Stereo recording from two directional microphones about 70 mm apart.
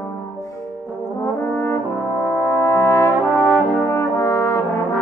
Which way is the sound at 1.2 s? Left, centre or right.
Left.